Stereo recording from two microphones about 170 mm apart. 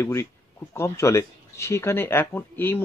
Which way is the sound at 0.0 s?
15° left (ahead or behind).